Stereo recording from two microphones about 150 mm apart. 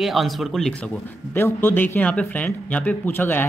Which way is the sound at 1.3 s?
15° left (ahead or behind).